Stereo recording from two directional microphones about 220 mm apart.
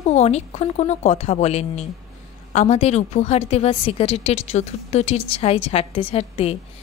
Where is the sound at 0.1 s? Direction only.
30° left (ahead or behind).